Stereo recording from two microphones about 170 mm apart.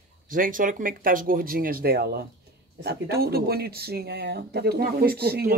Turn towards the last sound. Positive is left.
turn(degrees=-70)  # may be behind; listen again after turning